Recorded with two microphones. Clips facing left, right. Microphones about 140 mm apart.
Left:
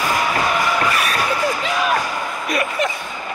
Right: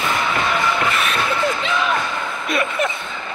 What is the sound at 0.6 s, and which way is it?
Music, 25° right (ahead or behind).